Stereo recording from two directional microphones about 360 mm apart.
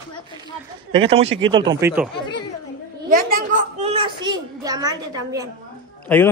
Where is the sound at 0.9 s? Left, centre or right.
Centre.